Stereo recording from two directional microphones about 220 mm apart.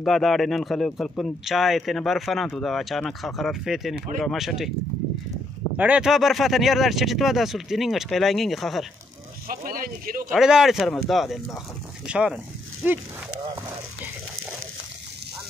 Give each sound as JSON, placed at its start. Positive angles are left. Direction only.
{"t": 0.0, "sound": "speech", "side_deg": 0}
{"t": 5.8, "sound": "speech", "side_deg": -5}
{"t": 9.5, "sound": "speech", "side_deg": -40}
{"t": 10.3, "sound": "speech", "side_deg": 0}